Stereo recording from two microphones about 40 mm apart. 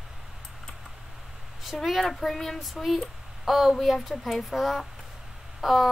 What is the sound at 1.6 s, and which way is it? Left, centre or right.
A woman's voice, centre.